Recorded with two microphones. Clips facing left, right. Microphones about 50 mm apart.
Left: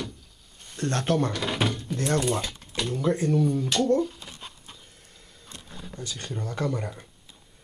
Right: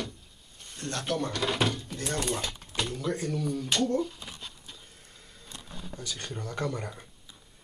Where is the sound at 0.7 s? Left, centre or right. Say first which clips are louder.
Left 6 dB; left.